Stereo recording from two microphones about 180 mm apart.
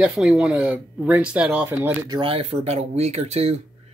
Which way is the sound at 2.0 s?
25° right (ahead or behind).